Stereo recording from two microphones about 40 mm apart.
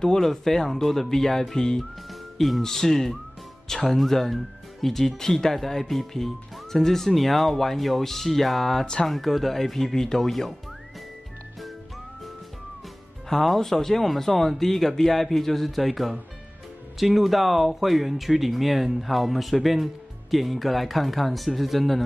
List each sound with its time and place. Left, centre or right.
0.0 s speech: centre
2.3 s speech: centre
13.3 s speech: centre